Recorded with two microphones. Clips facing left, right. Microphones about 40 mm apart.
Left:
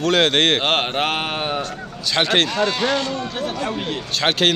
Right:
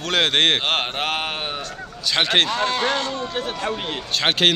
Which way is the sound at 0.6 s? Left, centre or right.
Centre.